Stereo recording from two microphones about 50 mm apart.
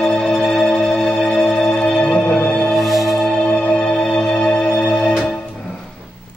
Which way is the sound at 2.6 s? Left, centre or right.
Centre.